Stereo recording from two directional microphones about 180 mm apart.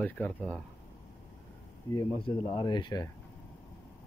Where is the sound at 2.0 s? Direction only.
30° left (ahead or behind).